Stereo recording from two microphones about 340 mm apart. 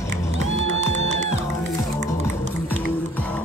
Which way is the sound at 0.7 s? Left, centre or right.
Centre.